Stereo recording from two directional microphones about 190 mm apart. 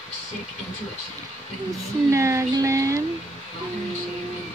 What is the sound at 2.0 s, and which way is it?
Speech, 15° right (ahead or behind).